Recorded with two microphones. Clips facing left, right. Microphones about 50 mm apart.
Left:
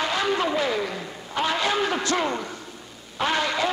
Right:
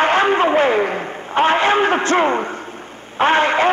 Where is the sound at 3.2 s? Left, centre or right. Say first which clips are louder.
Right 9 dB; right.